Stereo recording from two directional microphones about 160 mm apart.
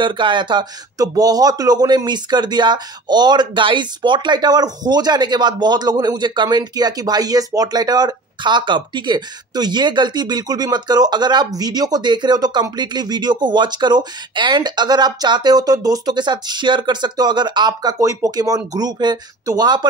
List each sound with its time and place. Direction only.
0.0 s speech: 30° right (ahead or behind)